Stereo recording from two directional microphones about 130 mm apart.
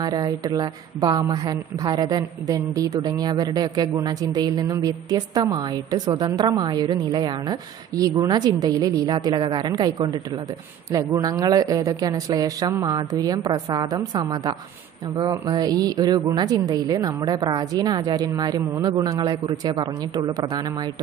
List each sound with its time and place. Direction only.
0.0 s a woman's voice: 30° right (ahead or behind)